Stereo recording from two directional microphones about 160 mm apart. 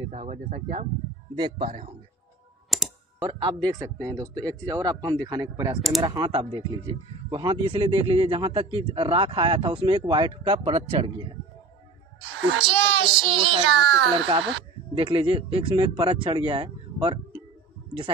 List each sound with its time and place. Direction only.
0.1 s speech: 45° right (ahead or behind)
1.3 s speech: 30° right (ahead or behind)
2.7 s computer keyboard: centre (ahead or behind)
3.6 s speech: 20° right (ahead or behind)
5.8 s speech: centre (ahead or behind)
6.0 s speech: 25° right (ahead or behind)
12.6 s speech: 30° right (ahead or behind)